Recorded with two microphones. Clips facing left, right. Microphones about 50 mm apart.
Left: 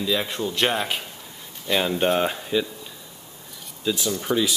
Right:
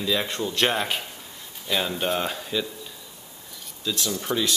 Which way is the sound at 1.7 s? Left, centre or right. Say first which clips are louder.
Left 4 dB; centre.